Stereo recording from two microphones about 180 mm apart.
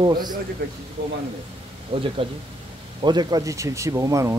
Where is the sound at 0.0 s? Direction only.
25° right (ahead or behind).